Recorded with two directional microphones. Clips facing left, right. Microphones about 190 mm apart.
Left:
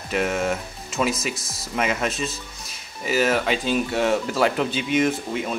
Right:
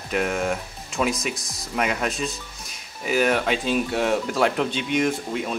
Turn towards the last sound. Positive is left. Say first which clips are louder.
# left 1 dB
turn(degrees=0)  # may be behind; listen again after turning